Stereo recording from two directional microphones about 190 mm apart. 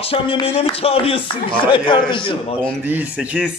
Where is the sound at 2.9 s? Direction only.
10° right (ahead or behind).